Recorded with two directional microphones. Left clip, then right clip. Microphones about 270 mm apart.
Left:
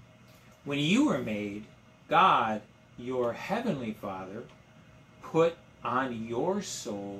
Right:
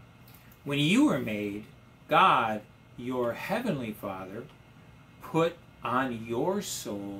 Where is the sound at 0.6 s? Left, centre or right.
Centre.